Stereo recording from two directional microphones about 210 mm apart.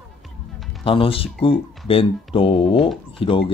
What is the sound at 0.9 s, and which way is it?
Speech, 25° left (ahead or behind).